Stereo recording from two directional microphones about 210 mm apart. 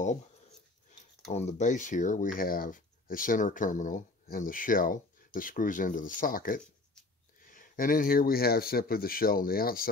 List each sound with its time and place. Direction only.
1.3 s speech: 35° left (ahead or behind)